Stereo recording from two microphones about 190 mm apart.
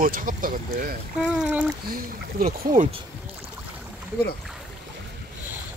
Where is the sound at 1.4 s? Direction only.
10° right (ahead or behind).